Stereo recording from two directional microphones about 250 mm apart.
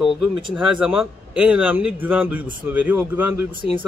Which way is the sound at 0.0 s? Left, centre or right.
Centre.